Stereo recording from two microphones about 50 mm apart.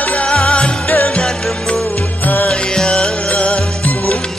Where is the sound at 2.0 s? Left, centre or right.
Left.